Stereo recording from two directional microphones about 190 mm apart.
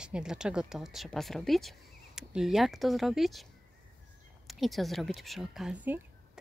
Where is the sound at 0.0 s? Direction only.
5° right (ahead or behind).